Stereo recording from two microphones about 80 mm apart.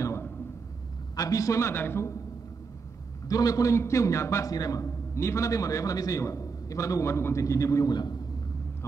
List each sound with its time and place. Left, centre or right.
0.0 s a sound: left
1.1 s a man's voice: left
3.3 s a man's voice: left
3.7 s a man's voice: left
4.5 s a man's voice: left
7.9 s a man's voice: left